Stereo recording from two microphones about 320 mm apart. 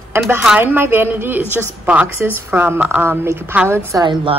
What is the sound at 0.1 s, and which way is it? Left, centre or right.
A woman's voice, centre.